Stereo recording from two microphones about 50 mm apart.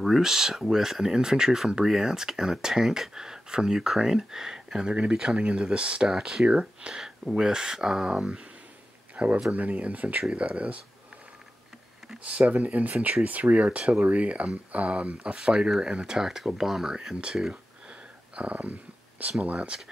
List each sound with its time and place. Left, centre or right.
0.0 s speech: centre
6.4 s speech: right
9.1 s speech: right
12.3 s speech: right; by 17.6 s centre
18.3 s speech: right